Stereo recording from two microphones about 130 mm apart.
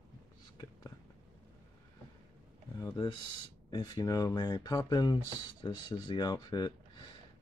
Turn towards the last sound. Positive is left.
turn(degrees=35)  # may be behind; listen again after turning